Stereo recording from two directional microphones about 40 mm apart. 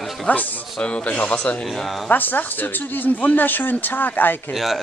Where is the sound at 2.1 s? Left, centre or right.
Left.